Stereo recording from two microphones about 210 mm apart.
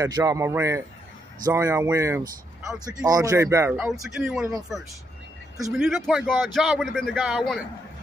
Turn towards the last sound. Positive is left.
turn(degrees=0)  # may be behind; listen again after turning